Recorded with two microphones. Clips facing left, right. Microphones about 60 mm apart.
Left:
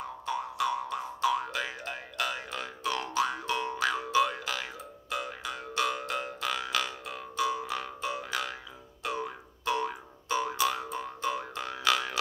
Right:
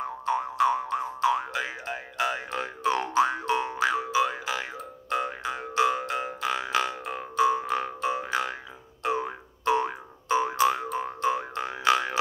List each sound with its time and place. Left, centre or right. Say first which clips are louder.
0.3 s boing: right 7 dB; right
3.8 s music: right 1 dB; centre
5.1 s boing: right 6 dB; right
5.9 s a sound: right 4 dB; centre
7.7 s music: right 6 dB; right
9.0 s boing: right 6 dB; right